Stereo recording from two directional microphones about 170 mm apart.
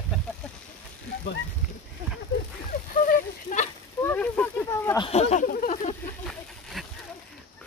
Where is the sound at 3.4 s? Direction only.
45° left (ahead or behind).